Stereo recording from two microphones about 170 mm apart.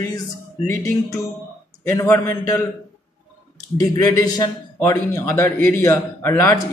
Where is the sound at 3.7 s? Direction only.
20° left (ahead or behind).